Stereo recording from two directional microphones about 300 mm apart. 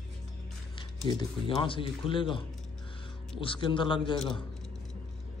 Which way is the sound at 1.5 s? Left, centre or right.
Centre.